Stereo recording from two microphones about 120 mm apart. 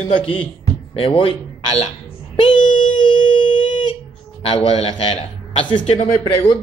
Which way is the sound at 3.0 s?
40° left (ahead or behind).